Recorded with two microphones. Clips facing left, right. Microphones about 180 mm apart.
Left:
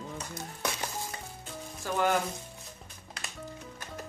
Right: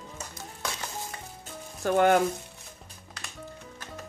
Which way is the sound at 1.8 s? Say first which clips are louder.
Right 7 dB; 60° right (ahead or behind).